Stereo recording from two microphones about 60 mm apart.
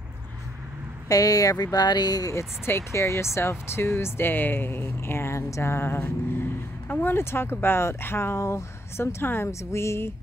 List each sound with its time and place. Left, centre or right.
1.0 s speech: left
2.3 s speech: left
9.5 s speech: left